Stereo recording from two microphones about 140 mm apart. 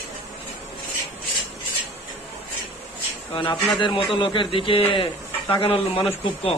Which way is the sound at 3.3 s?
35° left (ahead or behind).